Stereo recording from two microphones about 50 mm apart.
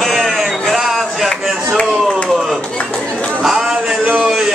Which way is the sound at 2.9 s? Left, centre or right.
Left.